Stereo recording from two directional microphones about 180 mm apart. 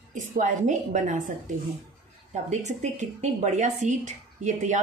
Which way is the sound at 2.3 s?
40° right (ahead or behind).